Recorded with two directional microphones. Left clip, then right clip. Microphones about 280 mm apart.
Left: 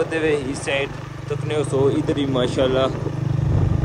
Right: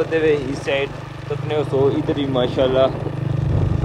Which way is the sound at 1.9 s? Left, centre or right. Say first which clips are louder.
Right 1 dB; left.